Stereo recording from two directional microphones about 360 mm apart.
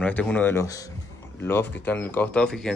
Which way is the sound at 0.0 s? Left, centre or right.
Centre.